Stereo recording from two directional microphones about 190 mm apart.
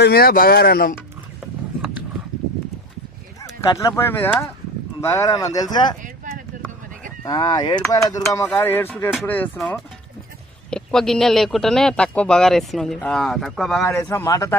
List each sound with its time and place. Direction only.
0.0 s speech: 55° left (ahead or behind)
3.7 s speech: 15° left (ahead or behind)
7.2 s speech: 20° left (ahead or behind); by 13.9 s centre (ahead or behind)
13.9 s speech: 10° left (ahead or behind)